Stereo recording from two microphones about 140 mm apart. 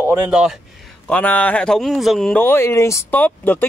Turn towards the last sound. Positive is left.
turn(degrees=10)  # may be behind; listen again after turning